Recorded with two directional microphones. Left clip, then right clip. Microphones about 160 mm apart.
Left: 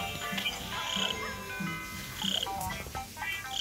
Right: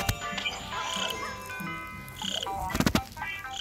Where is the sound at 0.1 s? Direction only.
25° right (ahead or behind).